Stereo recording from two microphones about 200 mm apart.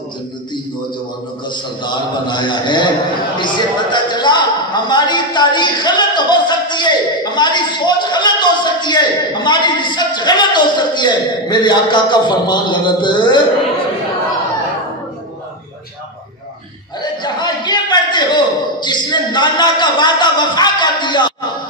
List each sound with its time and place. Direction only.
1.5 s a man's voice: 25° left (ahead or behind)
17.0 s a man's voice: 20° left (ahead or behind)